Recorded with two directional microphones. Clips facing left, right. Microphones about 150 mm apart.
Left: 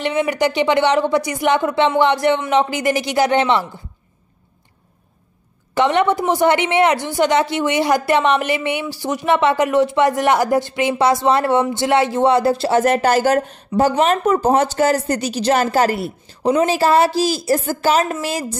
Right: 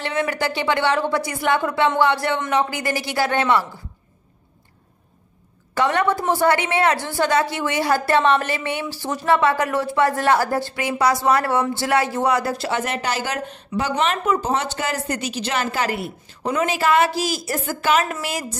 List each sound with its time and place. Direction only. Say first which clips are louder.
0.0 s speech: left 5 dB; 15° left (ahead or behind)
5.8 s speech: left 4 dB; 20° left (ahead or behind)